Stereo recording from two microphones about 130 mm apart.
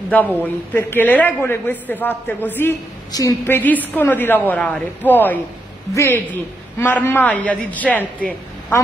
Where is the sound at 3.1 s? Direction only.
25° left (ahead or behind).